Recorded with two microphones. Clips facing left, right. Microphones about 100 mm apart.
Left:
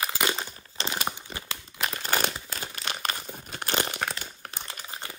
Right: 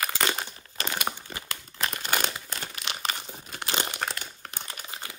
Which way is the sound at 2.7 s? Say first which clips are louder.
Left 1 dB; 40° left (ahead or behind).